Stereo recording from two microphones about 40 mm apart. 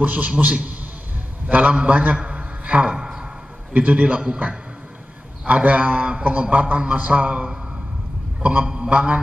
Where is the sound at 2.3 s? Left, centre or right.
Right.